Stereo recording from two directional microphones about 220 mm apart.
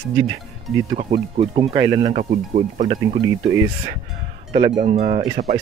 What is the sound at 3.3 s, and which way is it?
Speech, 15° right (ahead or behind).